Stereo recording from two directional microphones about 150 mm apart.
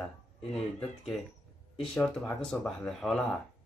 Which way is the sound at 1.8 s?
5° left (ahead or behind).